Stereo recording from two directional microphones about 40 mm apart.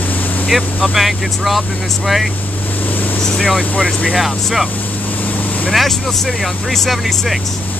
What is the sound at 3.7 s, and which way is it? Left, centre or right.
Speech, left.